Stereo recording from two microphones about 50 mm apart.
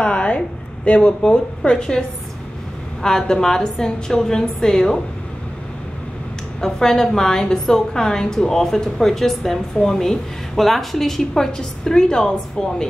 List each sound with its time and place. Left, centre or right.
0.0 s a sound: left
0.8 s a woman's voice: centre
6.6 s a woman's voice: centre